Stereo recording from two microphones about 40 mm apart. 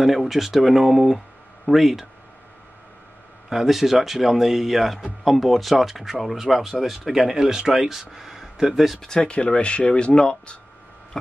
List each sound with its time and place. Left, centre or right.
0.0 s speech: centre
3.4 s speech: centre
9.0 s speech: left